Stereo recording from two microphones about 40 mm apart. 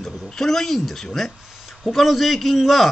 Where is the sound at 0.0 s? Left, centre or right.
Centre.